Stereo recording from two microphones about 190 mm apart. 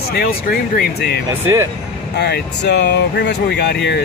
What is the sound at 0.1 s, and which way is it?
Speech, 50° left (ahead or behind).